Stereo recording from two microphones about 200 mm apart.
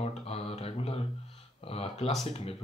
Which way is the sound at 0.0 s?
30° left (ahead or behind).